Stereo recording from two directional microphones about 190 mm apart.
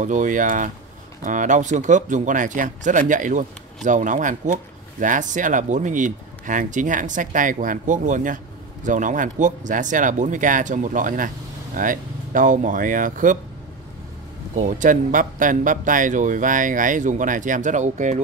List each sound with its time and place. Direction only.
0.0 s speech: 40° right (ahead or behind)
14.5 s speech: 40° right (ahead or behind)